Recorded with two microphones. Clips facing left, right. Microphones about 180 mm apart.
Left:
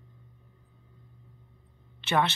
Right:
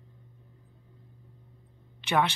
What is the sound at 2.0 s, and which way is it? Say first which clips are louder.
Speech: even; 10° right (ahead or behind).